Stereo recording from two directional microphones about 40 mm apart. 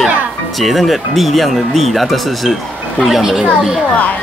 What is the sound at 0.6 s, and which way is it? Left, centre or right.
Speech, centre.